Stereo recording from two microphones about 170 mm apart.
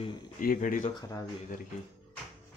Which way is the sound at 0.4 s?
55° left (ahead or behind).